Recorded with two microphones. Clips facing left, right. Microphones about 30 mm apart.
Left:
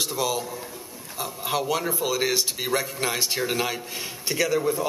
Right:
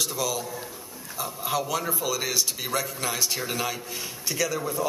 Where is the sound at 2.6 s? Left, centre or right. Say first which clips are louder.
Left 3 dB; centre.